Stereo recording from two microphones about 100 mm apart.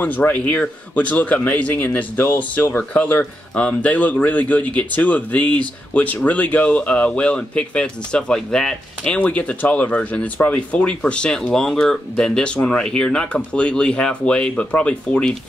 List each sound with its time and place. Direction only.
0.0 s a man's voice: 15° left (ahead or behind)